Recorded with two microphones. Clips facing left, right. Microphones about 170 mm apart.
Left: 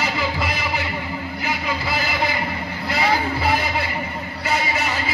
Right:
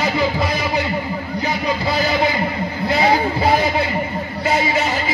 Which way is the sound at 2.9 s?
20° right (ahead or behind).